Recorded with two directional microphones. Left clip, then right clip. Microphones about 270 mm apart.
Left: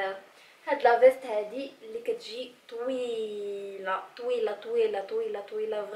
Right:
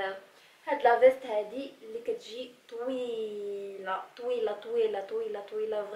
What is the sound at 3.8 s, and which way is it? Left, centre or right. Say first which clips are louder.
Speech: left 3 dB; centre.